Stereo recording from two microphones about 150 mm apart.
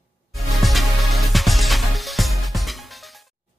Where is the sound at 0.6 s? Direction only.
Centre (ahead or behind).